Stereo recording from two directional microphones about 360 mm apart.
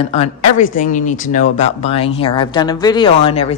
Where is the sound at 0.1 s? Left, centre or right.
Centre.